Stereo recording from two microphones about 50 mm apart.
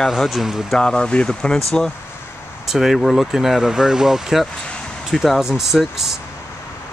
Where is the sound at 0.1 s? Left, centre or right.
Centre.